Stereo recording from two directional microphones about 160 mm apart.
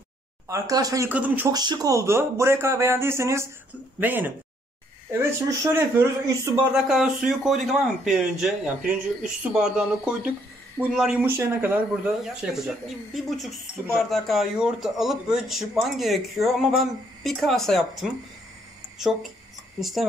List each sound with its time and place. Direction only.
0.5 s speech: 20° right (ahead or behind)
1.1 s speech: 10° right (ahead or behind)
1.5 s speech: 25° right (ahead or behind)
6.7 s speech: 5° right (ahead or behind)
19.8 s speech: centre (ahead or behind)